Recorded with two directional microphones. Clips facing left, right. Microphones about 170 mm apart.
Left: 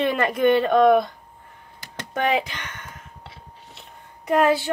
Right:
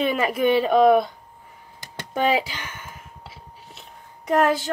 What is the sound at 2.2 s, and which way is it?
Speech, 10° right (ahead or behind).